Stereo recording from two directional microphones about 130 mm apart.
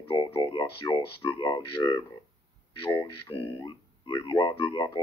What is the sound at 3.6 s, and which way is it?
Speech, 35° left (ahead or behind).